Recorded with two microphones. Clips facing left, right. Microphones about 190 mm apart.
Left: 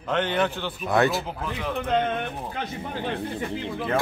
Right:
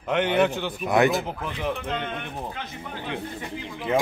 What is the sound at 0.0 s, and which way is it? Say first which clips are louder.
A man's voice: right 3 dB; 15° right (ahead or behind).